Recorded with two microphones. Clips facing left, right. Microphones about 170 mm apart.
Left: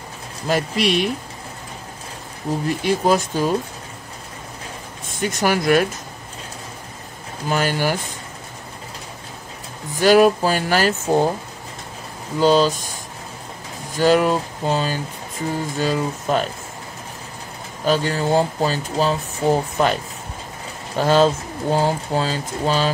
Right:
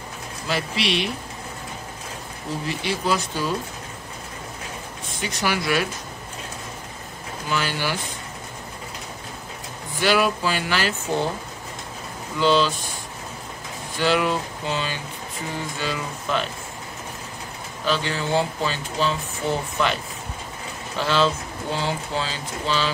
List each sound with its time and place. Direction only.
0.5 s speech: 45° left (ahead or behind)
2.7 s speech: 45° left (ahead or behind)
5.1 s speech: 50° left (ahead or behind)
7.4 s speech: 45° left (ahead or behind)
9.9 s speech: 45° left (ahead or behind)
12.4 s speech: 40° left (ahead or behind)
13.9 s speech: 45° left (ahead or behind)
17.8 s speech: 45° left (ahead or behind)